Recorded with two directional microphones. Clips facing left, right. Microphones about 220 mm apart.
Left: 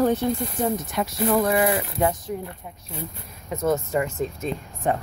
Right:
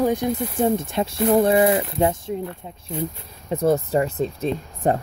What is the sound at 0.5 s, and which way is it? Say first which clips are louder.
Speech: right 4 dB; 30° right (ahead or behind).